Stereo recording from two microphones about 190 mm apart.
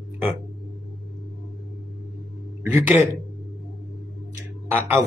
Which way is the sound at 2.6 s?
10° right (ahead or behind).